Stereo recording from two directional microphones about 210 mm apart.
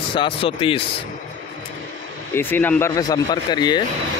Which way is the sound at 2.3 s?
10° left (ahead or behind).